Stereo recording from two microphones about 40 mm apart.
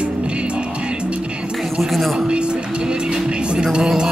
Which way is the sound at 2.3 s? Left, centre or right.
Right.